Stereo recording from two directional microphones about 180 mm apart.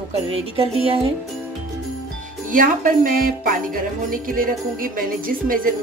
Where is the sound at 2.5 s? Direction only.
50° right (ahead or behind).